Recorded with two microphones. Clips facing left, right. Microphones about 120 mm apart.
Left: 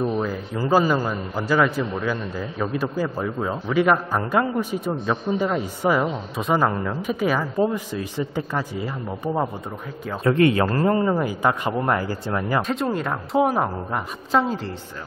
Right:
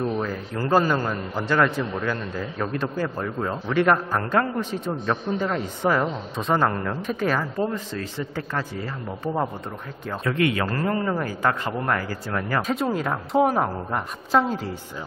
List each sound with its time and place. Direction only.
0.0 s a man's voice: 10° left (ahead or behind)
10.2 s a man's voice: 35° left (ahead or behind)
11.1 s a man's voice: 15° left (ahead or behind)
12.6 s a woman's voice: centre (ahead or behind)